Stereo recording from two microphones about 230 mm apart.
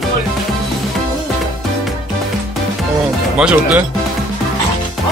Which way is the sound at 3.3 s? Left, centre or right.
Centre.